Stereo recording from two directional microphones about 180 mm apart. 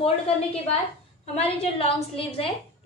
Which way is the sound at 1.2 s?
35° left (ahead or behind).